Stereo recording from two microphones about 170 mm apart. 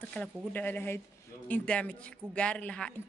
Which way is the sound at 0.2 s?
5° left (ahead or behind).